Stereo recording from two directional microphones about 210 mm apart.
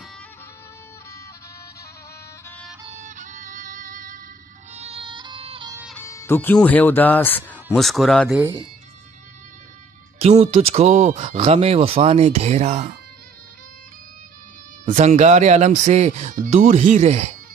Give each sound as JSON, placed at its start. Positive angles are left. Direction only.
{"t": 2.9, "sound": "music", "side_deg": -35}
{"t": 4.7, "sound": "music", "side_deg": -30}
{"t": 5.9, "sound": "speech", "side_deg": 10}
{"t": 8.4, "sound": "speech", "side_deg": -15}
{"t": 10.1, "sound": "speech", "side_deg": -30}
{"t": 14.9, "sound": "speech", "side_deg": -35}